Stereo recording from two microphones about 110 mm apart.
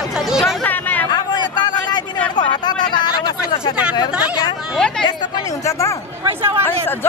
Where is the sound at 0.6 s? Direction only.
15° left (ahead or behind).